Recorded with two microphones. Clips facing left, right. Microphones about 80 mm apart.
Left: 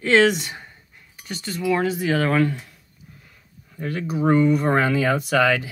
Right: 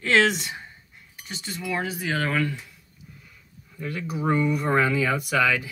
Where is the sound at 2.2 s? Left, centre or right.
Left.